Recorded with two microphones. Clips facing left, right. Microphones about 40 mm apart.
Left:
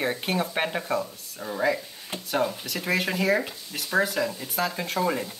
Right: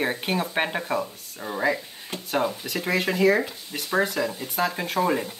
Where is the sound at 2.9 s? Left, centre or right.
Centre.